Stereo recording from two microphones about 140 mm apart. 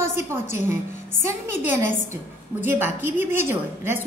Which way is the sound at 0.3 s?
15° right (ahead or behind).